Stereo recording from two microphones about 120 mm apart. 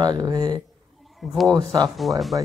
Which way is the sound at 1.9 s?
Centre (ahead or behind).